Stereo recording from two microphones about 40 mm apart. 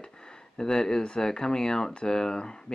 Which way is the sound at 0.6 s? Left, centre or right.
Centre.